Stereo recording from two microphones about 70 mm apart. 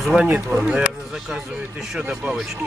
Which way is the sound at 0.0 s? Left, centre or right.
Centre.